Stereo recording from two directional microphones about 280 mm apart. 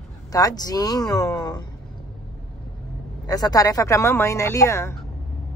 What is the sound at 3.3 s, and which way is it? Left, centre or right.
Speech, centre.